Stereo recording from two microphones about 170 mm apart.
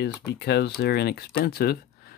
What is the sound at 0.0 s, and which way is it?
Speech, 75° left (ahead or behind).